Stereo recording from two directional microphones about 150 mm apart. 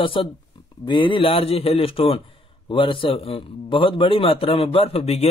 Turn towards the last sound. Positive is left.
turn(degrees=40)  # may be behind; listen again after turning